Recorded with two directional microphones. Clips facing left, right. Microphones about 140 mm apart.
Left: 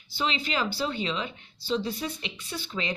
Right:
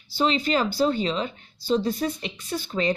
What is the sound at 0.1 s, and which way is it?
Speech, 40° right (ahead or behind).